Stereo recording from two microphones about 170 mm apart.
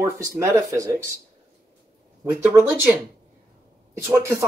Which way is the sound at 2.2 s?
15° right (ahead or behind).